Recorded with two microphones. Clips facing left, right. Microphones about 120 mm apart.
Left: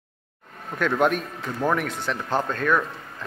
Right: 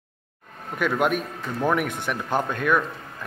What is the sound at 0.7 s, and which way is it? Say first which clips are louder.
A man's voice: left 1 dB; 10° right (ahead or behind).